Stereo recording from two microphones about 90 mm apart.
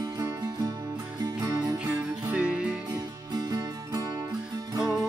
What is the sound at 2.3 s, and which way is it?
Music, 10° right (ahead or behind).